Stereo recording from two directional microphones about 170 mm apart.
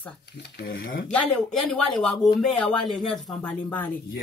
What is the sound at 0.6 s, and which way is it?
Speech, 60° left (ahead or behind).